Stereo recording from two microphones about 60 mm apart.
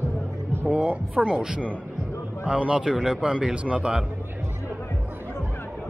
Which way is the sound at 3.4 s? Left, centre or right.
Centre.